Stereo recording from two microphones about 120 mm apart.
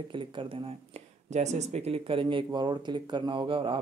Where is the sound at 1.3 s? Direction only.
70° right (ahead or behind); by 3.8 s 45° right (ahead or behind).